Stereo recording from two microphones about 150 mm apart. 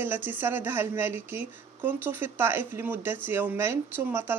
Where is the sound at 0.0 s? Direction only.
15° right (ahead or behind).